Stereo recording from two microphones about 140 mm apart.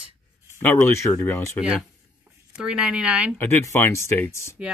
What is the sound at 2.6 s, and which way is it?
Speech, 5° right (ahead or behind).